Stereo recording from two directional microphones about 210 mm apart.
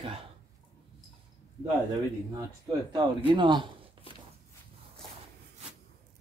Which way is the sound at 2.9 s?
20° right (ahead or behind).